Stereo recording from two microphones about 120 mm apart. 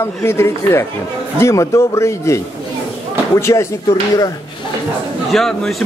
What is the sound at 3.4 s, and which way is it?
Speech, 25° left (ahead or behind).